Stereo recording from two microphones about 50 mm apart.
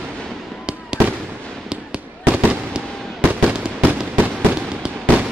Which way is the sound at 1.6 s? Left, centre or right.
Centre.